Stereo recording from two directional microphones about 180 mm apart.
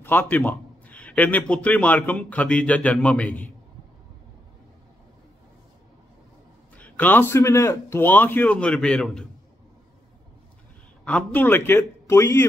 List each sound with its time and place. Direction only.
0.0 s a man's voice: 10° left (ahead or behind)
6.8 s a man's voice: 10° left (ahead or behind)
11.1 s a man's voice: 10° left (ahead or behind)